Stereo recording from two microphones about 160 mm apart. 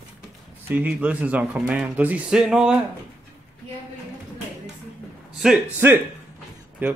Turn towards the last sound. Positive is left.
turn(degrees=-10)  # may be behind; listen again after turning